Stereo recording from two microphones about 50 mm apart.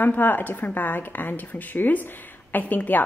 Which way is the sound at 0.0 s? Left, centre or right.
Left.